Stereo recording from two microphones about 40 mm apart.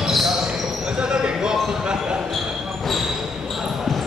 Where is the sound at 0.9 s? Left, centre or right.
Right.